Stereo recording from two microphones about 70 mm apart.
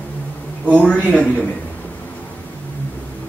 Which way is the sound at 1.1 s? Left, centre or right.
Centre.